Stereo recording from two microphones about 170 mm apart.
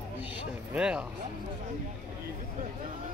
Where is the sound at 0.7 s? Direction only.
5° right (ahead or behind).